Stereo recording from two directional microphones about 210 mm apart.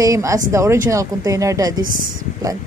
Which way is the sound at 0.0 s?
15° right (ahead or behind).